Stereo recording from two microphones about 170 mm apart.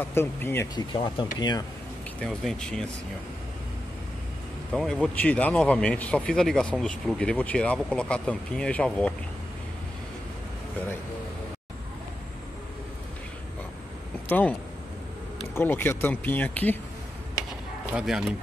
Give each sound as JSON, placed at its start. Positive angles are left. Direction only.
{"t": 0.1, "sound": "speech", "side_deg": 15}
{"t": 0.7, "sound": "speech", "side_deg": 25}
{"t": 2.1, "sound": "speech", "side_deg": 5}
{"t": 4.7, "sound": "speech", "side_deg": 5}
{"t": 14.3, "sound": "speech", "side_deg": 10}
{"t": 15.5, "sound": "speech", "side_deg": 10}
{"t": 17.9, "sound": "speech", "side_deg": -5}